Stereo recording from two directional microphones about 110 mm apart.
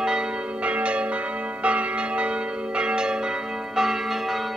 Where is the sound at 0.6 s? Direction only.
10° right (ahead or behind).